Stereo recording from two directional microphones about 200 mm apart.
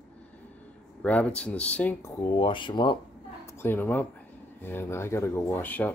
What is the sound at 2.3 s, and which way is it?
Speech, 25° left (ahead or behind).